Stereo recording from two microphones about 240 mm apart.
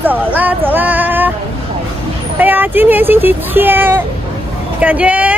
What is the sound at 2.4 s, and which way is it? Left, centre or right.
Speech, centre.